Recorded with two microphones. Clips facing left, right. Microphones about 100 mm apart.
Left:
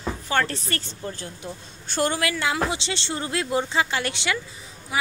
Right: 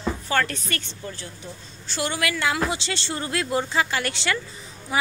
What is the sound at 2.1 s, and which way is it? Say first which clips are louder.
Speech: even; 25° left (ahead or behind).